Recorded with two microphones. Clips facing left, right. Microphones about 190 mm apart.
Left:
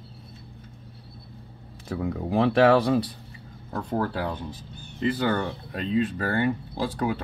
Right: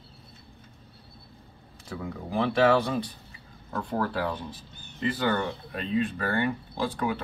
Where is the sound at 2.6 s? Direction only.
35° left (ahead or behind).